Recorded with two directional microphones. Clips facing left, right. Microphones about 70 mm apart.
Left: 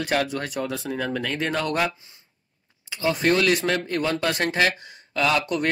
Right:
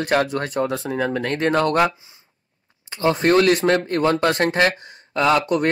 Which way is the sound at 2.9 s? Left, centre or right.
Right.